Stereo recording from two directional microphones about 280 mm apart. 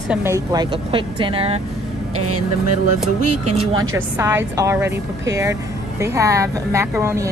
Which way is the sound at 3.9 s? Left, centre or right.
Centre.